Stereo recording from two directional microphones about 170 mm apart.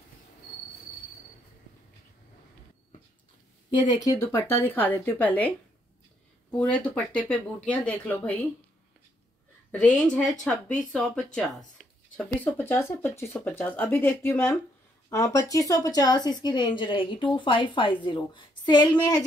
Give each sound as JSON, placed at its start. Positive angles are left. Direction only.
{"t": 3.7, "sound": "a woman's voice", "side_deg": 20}
{"t": 6.5, "sound": "a woman's voice", "side_deg": 10}
{"t": 9.7, "sound": "a woman's voice", "side_deg": 5}
{"t": 11.3, "sound": "a sound", "side_deg": 0}
{"t": 12.3, "sound": "a woman's voice", "side_deg": 10}